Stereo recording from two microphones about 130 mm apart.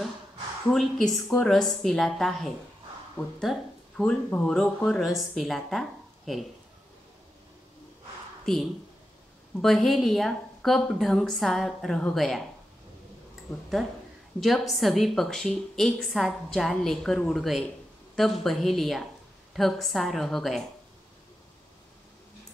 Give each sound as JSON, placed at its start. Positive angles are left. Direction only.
{"t": 0.7, "sound": "a woman's voice", "side_deg": 5}
{"t": 9.6, "sound": "a woman's voice", "side_deg": 0}
{"t": 13.5, "sound": "a woman's voice", "side_deg": 0}